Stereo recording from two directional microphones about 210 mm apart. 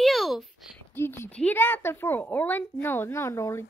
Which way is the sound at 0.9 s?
10° left (ahead or behind).